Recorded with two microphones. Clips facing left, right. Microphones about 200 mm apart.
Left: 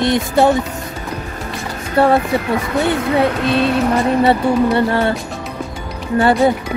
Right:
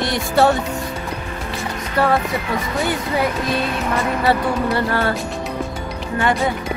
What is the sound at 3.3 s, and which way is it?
Speech, 65° left (ahead or behind).